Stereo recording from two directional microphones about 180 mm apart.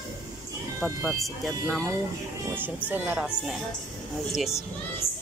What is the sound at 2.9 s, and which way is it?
Speech, 10° right (ahead or behind).